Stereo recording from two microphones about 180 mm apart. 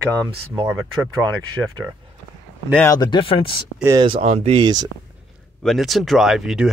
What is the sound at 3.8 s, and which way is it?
Speech, 25° right (ahead or behind).